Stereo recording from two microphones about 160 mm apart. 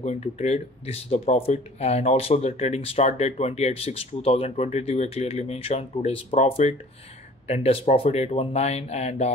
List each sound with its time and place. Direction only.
0.0 s speech: 45° left (ahead or behind)